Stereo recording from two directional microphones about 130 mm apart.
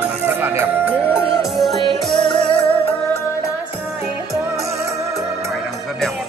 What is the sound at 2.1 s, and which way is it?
Music, 40° left (ahead or behind).